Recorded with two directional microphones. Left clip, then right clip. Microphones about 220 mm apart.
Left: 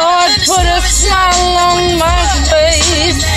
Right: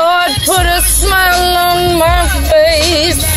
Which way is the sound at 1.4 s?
35° right (ahead or behind).